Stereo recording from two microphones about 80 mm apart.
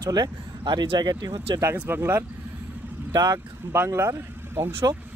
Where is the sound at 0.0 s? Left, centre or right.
Right.